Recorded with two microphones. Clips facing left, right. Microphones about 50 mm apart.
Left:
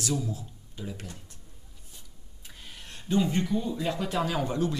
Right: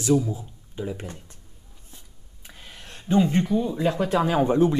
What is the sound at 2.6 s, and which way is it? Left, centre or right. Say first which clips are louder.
Speech: right 2 dB; right.